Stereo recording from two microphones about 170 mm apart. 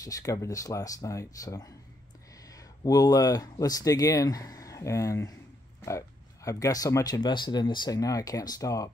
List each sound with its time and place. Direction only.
0.0 s speech: 20° left (ahead or behind)